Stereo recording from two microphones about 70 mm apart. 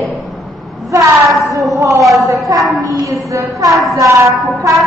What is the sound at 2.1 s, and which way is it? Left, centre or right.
A woman's voice, right.